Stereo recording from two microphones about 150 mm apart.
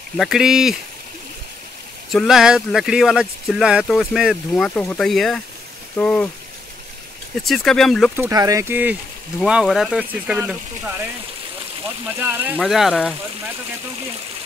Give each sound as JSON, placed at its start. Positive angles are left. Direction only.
{"t": 0.2, "sound": "speech", "side_deg": -5}
{"t": 2.0, "sound": "speech", "side_deg": 0}
{"t": 4.6, "sound": "speech", "side_deg": 5}
{"t": 7.4, "sound": "speech", "side_deg": 0}
{"t": 8.2, "sound": "speech", "side_deg": -25}
{"t": 9.4, "sound": "speech", "side_deg": -5}
{"t": 12.2, "sound": "speech", "side_deg": -15}
{"t": 12.5, "sound": "speech", "side_deg": 0}